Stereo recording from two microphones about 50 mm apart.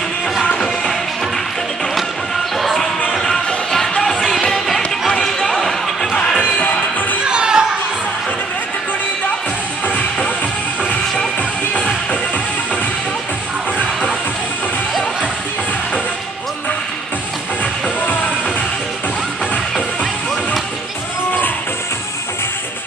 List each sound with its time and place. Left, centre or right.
0.4 s music: left
2.5 s music: centre
5.1 s chatter: centre
6.1 s music: left
7.2 s children playing: centre
10.8 s music: left